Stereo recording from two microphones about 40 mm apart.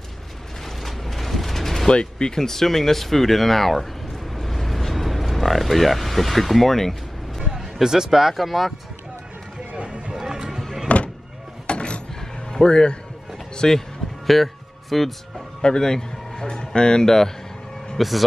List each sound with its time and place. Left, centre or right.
0.7 s mechanisms: centre
1.9 s speech: left; by 7.0 s centre
7.5 s speech: centre
9.8 s a sound: right
10.1 s music: centre
10.9 s a sound: left
12.2 s music: centre
13.6 s music: centre
15.6 s speech: centre
17.9 s speech: centre